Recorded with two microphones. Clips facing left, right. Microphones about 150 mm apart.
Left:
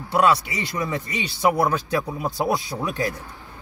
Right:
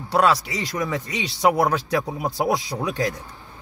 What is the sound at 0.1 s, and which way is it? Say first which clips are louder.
Speech: even; 90° right.